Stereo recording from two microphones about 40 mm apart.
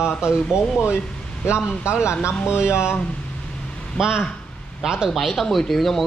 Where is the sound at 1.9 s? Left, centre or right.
Left.